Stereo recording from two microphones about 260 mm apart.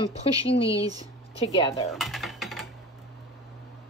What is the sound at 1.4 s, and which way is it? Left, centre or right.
Speech, centre.